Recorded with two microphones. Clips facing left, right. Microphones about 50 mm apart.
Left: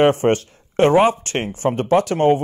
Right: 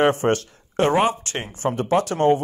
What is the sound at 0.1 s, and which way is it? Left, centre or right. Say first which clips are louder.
A man's voice: left 3 dB; left.